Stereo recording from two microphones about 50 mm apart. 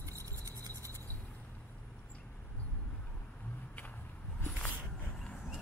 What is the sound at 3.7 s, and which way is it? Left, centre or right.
Vehicle, left.